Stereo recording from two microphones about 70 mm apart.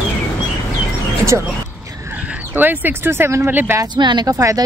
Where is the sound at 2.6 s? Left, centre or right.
Right.